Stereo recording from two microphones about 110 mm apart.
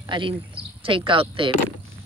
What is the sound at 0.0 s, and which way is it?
Speech, 45° right (ahead or behind).